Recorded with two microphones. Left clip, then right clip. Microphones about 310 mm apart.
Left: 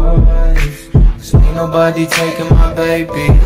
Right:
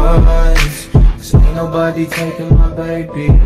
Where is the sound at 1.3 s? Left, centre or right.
Centre.